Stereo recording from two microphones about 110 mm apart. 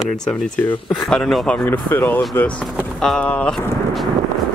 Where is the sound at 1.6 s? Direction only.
20° left (ahead or behind).